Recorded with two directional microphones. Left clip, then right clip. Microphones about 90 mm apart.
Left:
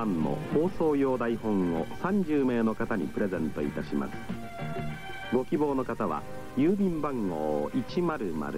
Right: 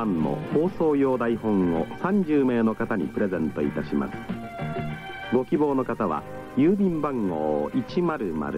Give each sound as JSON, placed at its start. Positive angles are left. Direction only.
{"t": 0.0, "sound": "speech", "side_deg": -10}